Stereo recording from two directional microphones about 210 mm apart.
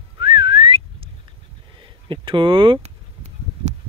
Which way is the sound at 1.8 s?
25° right (ahead or behind).